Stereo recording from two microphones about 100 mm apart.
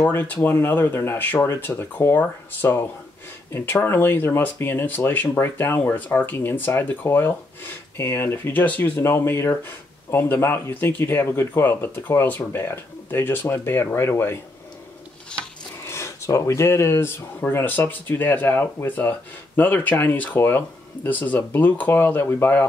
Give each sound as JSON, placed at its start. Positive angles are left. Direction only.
{"t": 0.0, "sound": "speech", "side_deg": 20}
{"t": 15.9, "sound": "speech", "side_deg": 30}